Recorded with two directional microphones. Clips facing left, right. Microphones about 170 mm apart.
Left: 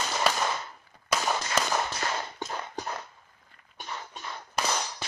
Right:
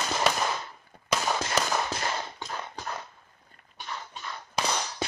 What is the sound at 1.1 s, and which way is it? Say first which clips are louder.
Firecracker: right 1 dB; 5° left (ahead or behind).